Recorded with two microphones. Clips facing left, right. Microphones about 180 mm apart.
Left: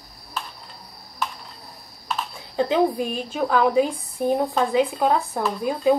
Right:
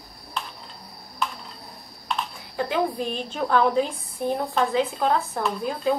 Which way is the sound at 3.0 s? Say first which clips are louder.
Left 3 dB; 5° left (ahead or behind).